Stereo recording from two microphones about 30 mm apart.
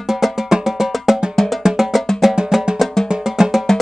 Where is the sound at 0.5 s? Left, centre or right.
Centre.